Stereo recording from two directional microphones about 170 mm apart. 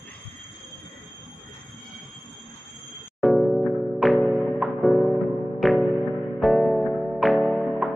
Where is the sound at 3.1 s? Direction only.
Centre (ahead or behind).